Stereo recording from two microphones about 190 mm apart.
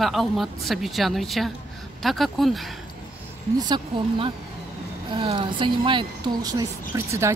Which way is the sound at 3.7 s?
30° right (ahead or behind).